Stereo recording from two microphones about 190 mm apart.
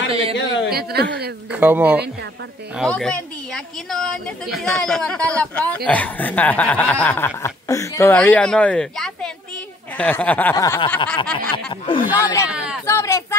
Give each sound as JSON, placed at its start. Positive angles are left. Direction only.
{"t": 0.1, "sound": "a man's voice", "side_deg": -30}
{"t": 0.7, "sound": "speech", "side_deg": -55}
{"t": 1.5, "sound": "speech", "side_deg": -10}
{"t": 2.8, "sound": "speech", "side_deg": 5}
{"t": 12.2, "sound": "speech", "side_deg": 15}
{"t": 12.4, "sound": "speech", "side_deg": -5}
{"t": 12.8, "sound": "speech", "side_deg": 15}